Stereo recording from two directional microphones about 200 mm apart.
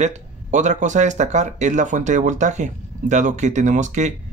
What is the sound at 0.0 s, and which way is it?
Speech, 35° right (ahead or behind).